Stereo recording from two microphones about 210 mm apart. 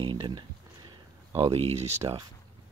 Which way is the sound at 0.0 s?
25° right (ahead or behind).